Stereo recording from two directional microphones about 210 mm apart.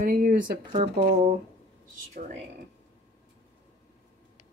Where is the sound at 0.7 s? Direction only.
25° right (ahead or behind).